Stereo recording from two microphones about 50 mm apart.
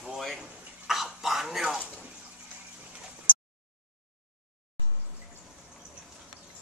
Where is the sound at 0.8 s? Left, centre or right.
Centre.